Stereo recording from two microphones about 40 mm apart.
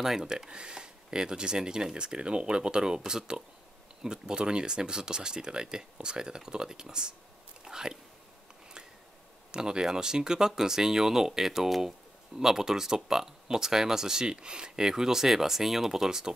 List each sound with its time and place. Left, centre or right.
0.0 s speech: centre
9.5 s speech: centre